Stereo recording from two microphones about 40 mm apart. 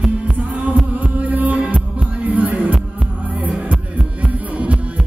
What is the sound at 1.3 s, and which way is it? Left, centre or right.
Music, right.